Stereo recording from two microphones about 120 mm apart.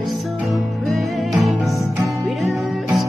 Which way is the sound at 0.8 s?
Centre (ahead or behind).